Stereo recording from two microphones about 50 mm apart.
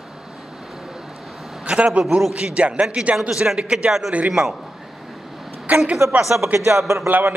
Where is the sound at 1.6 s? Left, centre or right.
Right.